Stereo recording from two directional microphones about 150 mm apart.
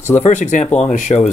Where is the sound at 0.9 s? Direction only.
55° left (ahead or behind).